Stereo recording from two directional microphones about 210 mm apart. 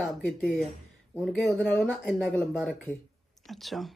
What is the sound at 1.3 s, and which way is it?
A woman's voice, 10° left (ahead or behind).